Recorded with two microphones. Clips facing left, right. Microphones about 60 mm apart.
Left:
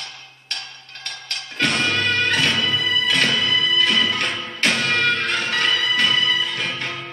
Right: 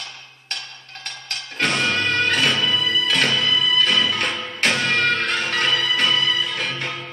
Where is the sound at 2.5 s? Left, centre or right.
Centre.